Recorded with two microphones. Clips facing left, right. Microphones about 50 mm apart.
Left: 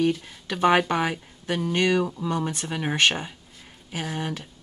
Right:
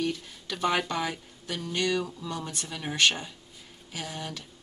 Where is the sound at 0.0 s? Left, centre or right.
Left.